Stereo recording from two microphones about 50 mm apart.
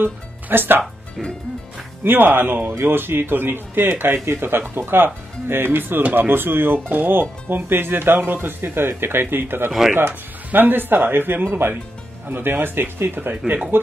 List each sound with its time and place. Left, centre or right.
0.0 s speech: right
2.0 s speech: right
9.7 s speech: centre
9.9 s speech: right